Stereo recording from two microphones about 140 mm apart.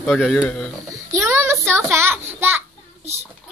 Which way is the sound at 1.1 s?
15° right (ahead or behind).